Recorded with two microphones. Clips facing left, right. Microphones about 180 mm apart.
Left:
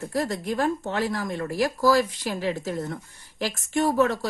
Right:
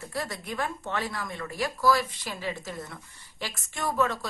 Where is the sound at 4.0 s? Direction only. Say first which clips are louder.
Left 1 dB; 40° left (ahead or behind).